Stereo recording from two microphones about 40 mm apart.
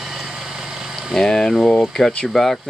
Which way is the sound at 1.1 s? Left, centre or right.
Centre.